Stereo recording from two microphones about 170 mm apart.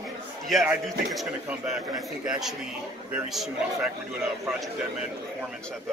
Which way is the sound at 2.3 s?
Centre (ahead or behind).